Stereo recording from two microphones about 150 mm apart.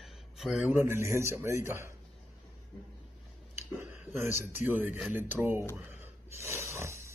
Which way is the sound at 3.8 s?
15° right (ahead or behind).